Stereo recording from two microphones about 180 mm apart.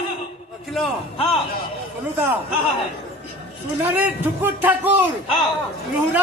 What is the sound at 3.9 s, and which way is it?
A man's voice, 10° right (ahead or behind).